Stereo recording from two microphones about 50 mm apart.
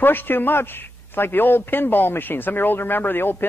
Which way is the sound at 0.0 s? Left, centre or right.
Left.